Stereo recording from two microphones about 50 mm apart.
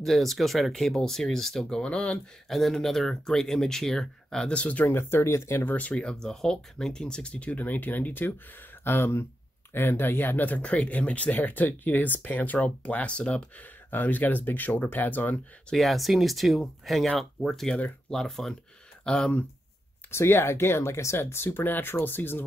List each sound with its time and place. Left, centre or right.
0.0 s speech: centre
1.8 s speech: left
2.5 s speech: centre; by 4.8 s left
4.8 s speech: left
5.7 s speech: left
6.2 s speech: centre; by 8.4 s left
8.8 s speech: left
13.8 s speech: left
15.7 s speech: centre
20.1 s speech: left